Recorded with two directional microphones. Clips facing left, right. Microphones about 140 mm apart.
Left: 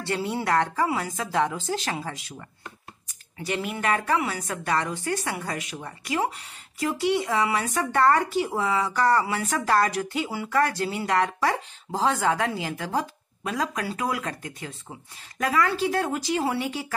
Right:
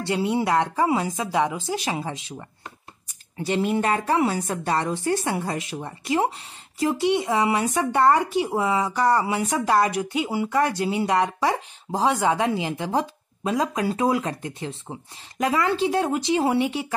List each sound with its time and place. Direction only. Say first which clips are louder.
0.0 s a woman's voice: right 4 dB; 20° right (ahead or behind)